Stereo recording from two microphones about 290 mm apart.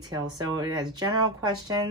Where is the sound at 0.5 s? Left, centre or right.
Centre.